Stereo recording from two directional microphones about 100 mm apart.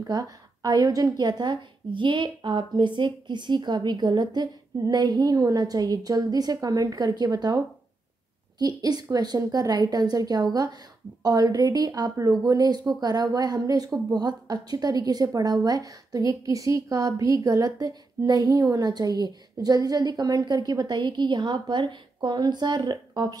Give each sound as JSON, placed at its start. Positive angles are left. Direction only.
{"t": 0.0, "sound": "a woman's voice", "side_deg": -35}